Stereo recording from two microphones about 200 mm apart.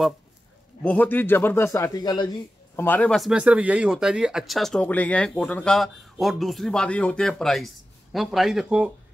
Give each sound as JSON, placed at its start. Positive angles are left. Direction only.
{"t": 0.8, "sound": "a man's voice", "side_deg": 10}